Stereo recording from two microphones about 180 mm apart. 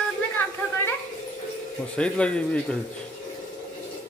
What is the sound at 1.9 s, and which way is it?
Speech, 5° left (ahead or behind).